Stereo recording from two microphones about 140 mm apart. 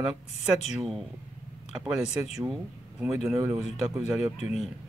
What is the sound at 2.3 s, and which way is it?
Speech, 5° right (ahead or behind).